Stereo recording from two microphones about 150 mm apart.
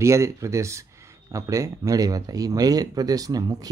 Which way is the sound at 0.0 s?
20° right (ahead or behind).